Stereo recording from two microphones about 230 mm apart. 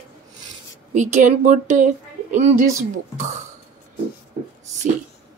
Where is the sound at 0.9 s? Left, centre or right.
Right.